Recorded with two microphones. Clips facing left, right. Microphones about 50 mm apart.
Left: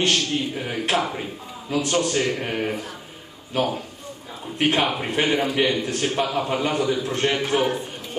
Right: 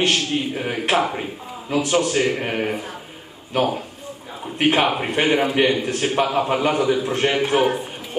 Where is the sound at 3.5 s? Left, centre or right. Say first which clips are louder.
Right 3 dB; centre.